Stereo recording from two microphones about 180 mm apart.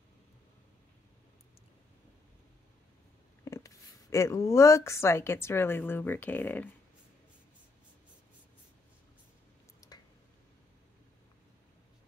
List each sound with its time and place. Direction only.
3.4 s speech: 15° left (ahead or behind)
9.8 s finger snapping: 20° left (ahead or behind)